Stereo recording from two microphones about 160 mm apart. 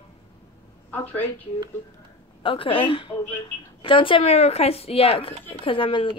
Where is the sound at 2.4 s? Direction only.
30° left (ahead or behind).